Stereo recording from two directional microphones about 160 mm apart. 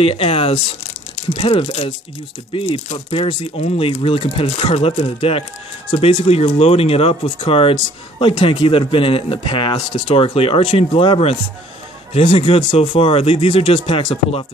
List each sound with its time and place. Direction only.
0.0 s speech: 35° left (ahead or behind)